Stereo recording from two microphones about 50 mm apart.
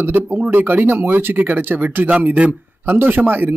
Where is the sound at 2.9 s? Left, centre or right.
Right.